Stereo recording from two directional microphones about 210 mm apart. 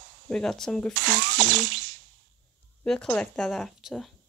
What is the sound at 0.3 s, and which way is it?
Speech, 5° left (ahead or behind).